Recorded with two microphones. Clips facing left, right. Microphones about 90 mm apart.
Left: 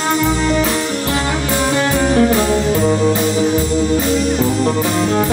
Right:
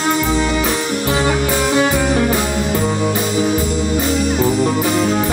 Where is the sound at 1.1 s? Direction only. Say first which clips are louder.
Right 5 dB; 15° right (ahead or behind).